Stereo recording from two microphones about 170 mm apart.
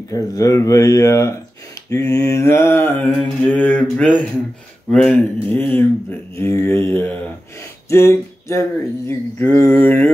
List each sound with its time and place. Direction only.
0.1 s speech: 20° left (ahead or behind)
1.9 s mantra: 20° left (ahead or behind)
4.9 s speech: 5° left (ahead or behind)
5.7 s mantra: 15° left (ahead or behind)